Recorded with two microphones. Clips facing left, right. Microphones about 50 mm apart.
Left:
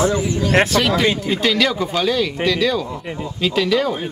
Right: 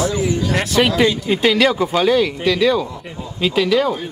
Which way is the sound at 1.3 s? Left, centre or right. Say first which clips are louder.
Right 3 dB; centre.